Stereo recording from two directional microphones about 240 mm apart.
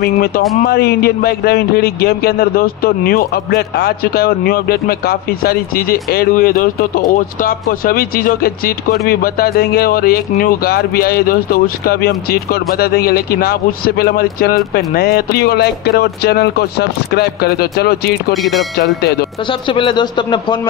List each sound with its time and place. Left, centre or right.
0.7 s a man's voice: left
18.3 s speech: centre
18.8 s a man's voice: left
19.7 s speech: centre